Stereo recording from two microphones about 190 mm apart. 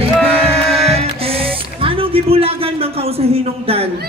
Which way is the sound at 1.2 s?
30° right (ahead or behind).